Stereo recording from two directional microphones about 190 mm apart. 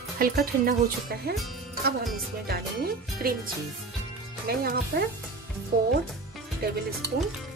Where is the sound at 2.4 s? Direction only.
55° right (ahead or behind).